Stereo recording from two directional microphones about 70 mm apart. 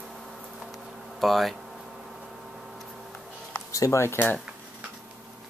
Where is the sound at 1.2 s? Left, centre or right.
Centre.